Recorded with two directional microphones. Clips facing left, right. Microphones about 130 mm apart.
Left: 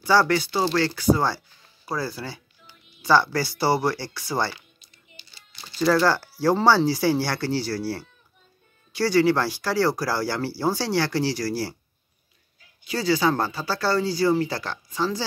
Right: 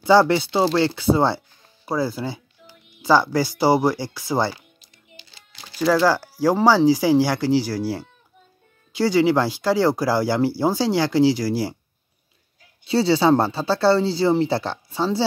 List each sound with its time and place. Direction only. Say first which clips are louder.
0.0 s speech: right 5 dB; 20° right (ahead or behind)
5.3 s typing: left 1 dB; 90° right
5.8 s speech: right 2 dB; 10° right (ahead or behind)
12.8 s speech: right 5 dB; 30° right (ahead or behind)